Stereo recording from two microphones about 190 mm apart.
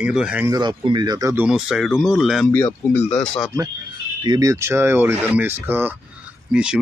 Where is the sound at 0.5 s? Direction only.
25° right (ahead or behind).